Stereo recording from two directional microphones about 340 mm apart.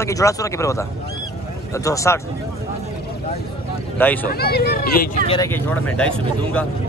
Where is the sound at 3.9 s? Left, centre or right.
Centre.